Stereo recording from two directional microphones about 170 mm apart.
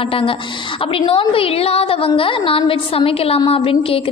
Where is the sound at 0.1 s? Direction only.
30° left (ahead or behind).